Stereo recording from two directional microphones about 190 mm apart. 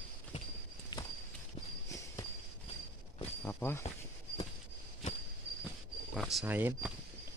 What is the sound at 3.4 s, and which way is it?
Speech, 10° left (ahead or behind).